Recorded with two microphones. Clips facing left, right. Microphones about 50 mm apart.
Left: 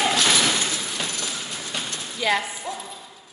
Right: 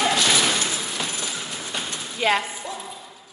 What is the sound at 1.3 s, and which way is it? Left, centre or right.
Train, centre.